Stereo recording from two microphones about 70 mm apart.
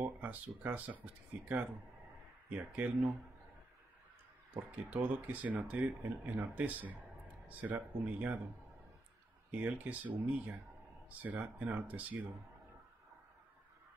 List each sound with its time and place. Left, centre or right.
0.2 s speech: right
4.6 s speech: right
9.5 s speech: right